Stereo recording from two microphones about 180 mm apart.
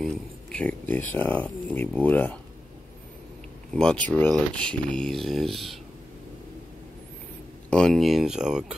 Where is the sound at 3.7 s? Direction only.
5° left (ahead or behind).